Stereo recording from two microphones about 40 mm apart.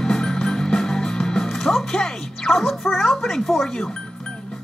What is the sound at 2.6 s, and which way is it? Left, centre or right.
Speech, centre.